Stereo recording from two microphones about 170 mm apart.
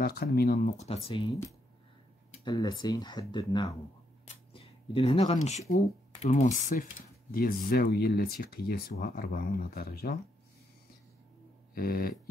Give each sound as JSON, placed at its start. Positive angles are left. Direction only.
{"t": 0.0, "sound": "speech", "side_deg": 65}
{"t": 0.7, "sound": "speech", "side_deg": 40}
{"t": 2.5, "sound": "speech", "side_deg": 20}
{"t": 11.7, "sound": "speech", "side_deg": 60}